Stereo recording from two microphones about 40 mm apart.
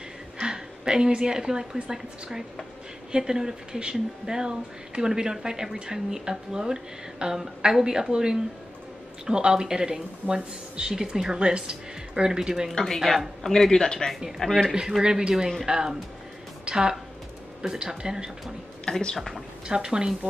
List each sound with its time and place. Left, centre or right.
0.4 s a woman's voice: centre
12.7 s speech: centre
14.7 s speech: centre
18.9 s speech: centre
19.1 s speech: centre
19.7 s speech: centre